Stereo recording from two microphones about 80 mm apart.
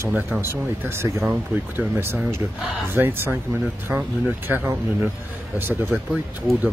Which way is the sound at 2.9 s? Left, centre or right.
Right.